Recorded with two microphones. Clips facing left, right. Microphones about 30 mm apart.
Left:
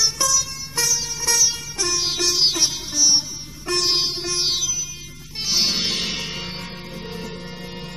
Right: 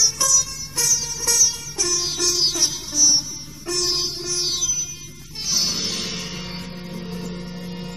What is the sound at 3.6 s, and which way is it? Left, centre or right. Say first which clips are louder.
Music: left 3 dB; left.